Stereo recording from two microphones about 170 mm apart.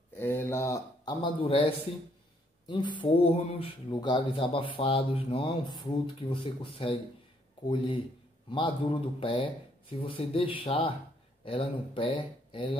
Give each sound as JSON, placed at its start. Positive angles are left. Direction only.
{"t": 0.1, "sound": "a man's voice", "side_deg": 15}
{"t": 2.7, "sound": "a man's voice", "side_deg": 25}